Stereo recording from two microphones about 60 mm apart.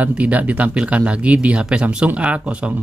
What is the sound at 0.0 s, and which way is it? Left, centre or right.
Speech, right.